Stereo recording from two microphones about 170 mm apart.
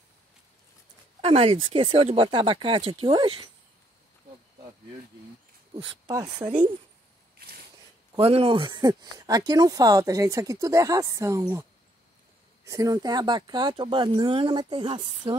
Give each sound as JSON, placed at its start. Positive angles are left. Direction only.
{"t": 1.2, "sound": "speech", "side_deg": -35}
{"t": 6.0, "sound": "speech", "side_deg": -25}
{"t": 7.3, "sound": "a sound", "side_deg": -65}
{"t": 8.2, "sound": "speech", "side_deg": -35}
{"t": 12.6, "sound": "speech", "side_deg": -20}